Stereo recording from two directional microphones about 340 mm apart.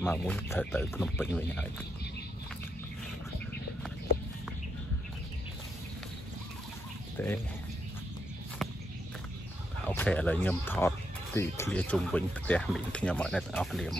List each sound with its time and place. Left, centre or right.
0.0 s speech: centre
7.2 s speech: centre
9.8 s speech: centre